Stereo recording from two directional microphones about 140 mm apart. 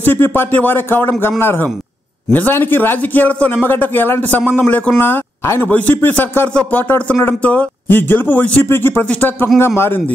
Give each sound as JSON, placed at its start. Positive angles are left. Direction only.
{"t": 0.0, "sound": "a man's voice", "side_deg": 15}